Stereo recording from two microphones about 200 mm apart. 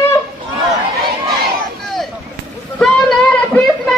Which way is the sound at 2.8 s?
5° left (ahead or behind).